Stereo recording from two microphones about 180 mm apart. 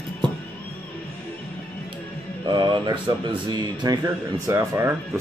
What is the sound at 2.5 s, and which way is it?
Speech, 25° right (ahead or behind).